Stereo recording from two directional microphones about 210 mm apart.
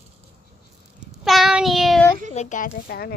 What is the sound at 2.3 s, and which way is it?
Speech, 35° left (ahead or behind).